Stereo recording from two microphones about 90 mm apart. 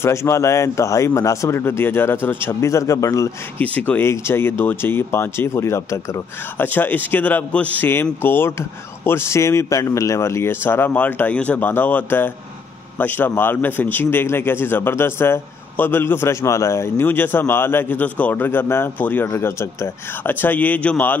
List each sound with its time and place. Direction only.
0.0 s speech: 35° left (ahead or behind)
3.5 s speech: 20° left (ahead or behind)
4.0 s a man's voice: 30° left (ahead or behind)
6.6 s a man's voice: 20° left (ahead or behind)